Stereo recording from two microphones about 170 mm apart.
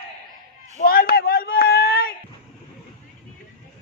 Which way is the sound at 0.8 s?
65° left (ahead or behind).